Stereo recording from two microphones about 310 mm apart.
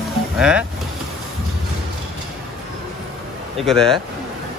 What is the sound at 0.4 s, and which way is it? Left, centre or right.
Speech, centre.